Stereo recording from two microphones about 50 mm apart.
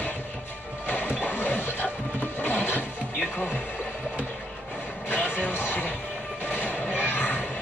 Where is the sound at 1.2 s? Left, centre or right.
Left.